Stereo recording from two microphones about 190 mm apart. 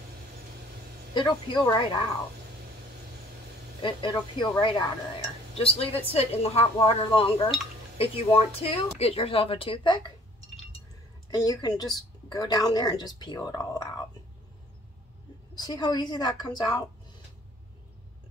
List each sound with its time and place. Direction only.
1.1 s a woman's voice: 25° left (ahead or behind)
3.8 s a woman's voice: 25° left (ahead or behind)
11.2 s a woman's voice: 20° left (ahead or behind)
15.5 s a woman's voice: 20° left (ahead or behind)